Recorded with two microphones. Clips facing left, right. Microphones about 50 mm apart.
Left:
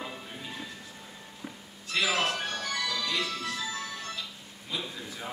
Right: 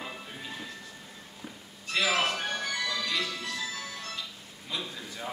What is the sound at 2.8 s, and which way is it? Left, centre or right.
Music, centre.